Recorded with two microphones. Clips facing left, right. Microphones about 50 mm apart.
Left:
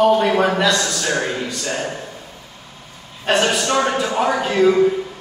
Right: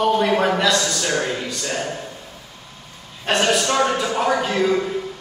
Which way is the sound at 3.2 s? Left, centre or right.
Centre.